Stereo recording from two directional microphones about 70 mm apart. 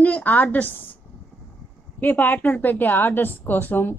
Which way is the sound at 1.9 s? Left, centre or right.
Left.